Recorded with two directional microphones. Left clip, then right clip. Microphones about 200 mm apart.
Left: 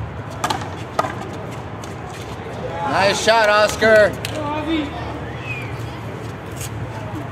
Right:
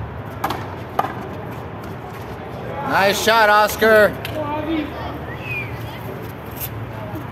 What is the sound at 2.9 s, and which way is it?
Speech, 30° right (ahead or behind).